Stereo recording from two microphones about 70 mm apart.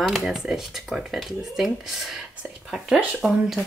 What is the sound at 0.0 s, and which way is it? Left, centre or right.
Speech, centre.